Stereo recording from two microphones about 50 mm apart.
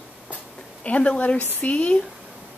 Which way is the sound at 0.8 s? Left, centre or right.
Left.